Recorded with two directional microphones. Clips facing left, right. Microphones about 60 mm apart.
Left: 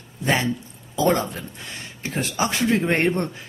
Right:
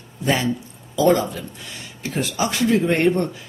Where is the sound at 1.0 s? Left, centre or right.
Left.